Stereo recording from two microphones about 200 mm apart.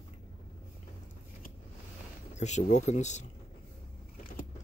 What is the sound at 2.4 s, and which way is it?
Speech, 35° left (ahead or behind).